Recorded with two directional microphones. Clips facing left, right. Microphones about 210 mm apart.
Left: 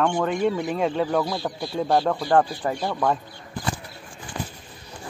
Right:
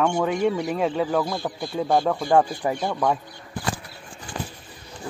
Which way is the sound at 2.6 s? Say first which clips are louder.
Right 1 dB; 15° right (ahead or behind).